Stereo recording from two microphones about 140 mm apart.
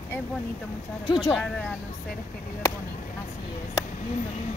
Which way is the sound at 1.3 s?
10° left (ahead or behind).